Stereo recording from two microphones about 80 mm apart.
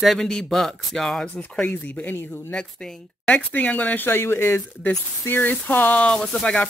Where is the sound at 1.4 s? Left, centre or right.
Centre.